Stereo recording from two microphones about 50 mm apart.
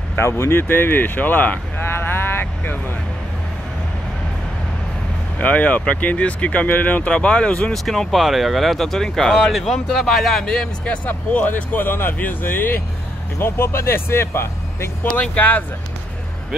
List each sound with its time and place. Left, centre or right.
0.1 s speech: left
2.0 s vehicle: left
5.4 s speech: left
7.7 s speech: centre
10.4 s speech: centre
11.1 s speech: left
13.4 s speech: left
15.1 s speech: left